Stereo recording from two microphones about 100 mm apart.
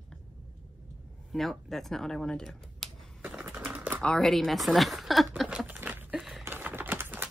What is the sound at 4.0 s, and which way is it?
Speech, 5° left (ahead or behind).